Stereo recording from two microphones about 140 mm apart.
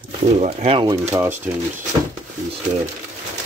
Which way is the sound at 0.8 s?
15° right (ahead or behind).